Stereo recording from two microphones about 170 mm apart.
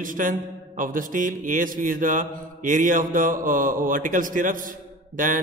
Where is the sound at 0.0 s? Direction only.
50° right (ahead or behind).